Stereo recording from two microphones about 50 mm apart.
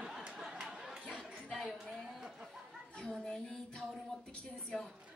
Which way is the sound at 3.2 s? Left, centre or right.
Centre.